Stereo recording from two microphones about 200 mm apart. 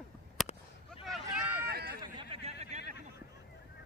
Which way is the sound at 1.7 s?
50° right (ahead or behind).